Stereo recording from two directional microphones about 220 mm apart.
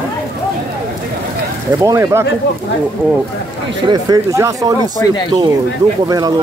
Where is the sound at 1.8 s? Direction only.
15° right (ahead or behind).